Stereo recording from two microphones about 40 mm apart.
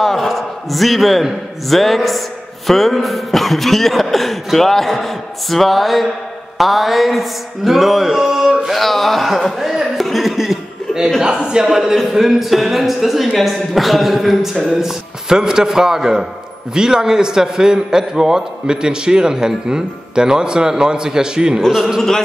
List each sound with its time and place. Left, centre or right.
0.0 s a man's voice: centre
9.6 s a sound: centre
11.2 s a man's voice: right
21.5 s a man's voice: centre